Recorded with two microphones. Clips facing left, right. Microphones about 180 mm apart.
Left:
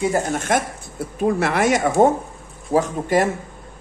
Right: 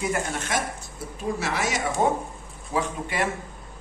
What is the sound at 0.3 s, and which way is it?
Speech, 50° left (ahead or behind).